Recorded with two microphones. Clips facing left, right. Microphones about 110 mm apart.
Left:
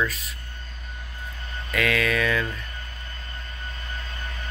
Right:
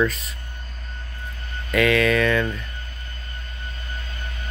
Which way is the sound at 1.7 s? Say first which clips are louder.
Right 6 dB; centre (ahead or behind).